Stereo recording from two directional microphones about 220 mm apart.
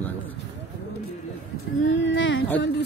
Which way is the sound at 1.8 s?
60° left (ahead or behind).